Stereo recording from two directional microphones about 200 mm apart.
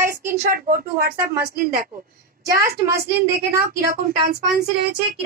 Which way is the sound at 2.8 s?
15° right (ahead or behind).